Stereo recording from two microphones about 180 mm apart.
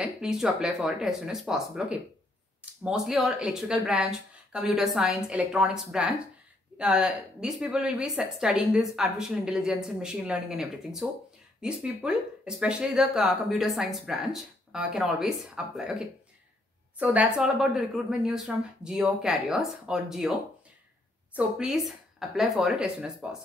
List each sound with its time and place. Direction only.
0.0 s speech: 5° right (ahead or behind)